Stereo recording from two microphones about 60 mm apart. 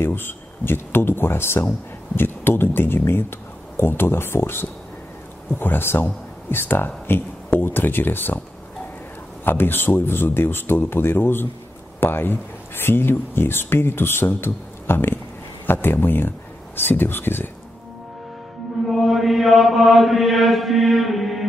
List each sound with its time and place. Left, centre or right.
0.0 s speech: left
9.4 s speech: left
18.9 s mantra: centre